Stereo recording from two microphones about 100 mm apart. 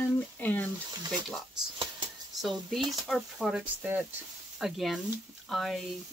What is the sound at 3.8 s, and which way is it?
Speech, 15° right (ahead or behind).